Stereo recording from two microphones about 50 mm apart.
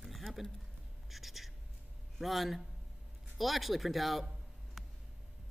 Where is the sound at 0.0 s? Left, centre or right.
Centre.